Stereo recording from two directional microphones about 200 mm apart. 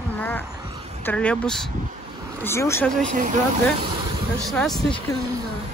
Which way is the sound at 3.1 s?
40° right (ahead or behind).